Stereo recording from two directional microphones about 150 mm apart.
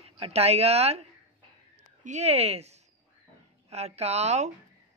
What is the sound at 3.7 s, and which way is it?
Speech, 45° right (ahead or behind).